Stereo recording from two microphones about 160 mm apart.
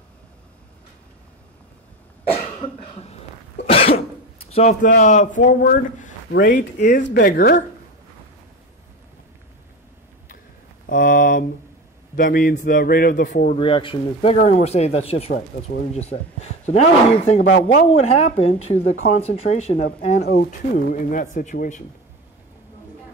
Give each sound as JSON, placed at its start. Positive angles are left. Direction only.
{"t": 3.6, "sound": "cough", "side_deg": 35}
{"t": 4.4, "sound": "a sound", "side_deg": 40}
{"t": 4.8, "sound": "a man's voice", "side_deg": 55}
{"t": 10.9, "sound": "a sound", "side_deg": 55}
{"t": 12.2, "sound": "a man's voice", "side_deg": 60}
{"t": 13.6, "sound": "speech", "side_deg": 35}
{"t": 14.3, "sound": "speech", "side_deg": 45}
{"t": 20.2, "sound": "speech", "side_deg": 80}
{"t": 20.7, "sound": "a man's voice", "side_deg": 55}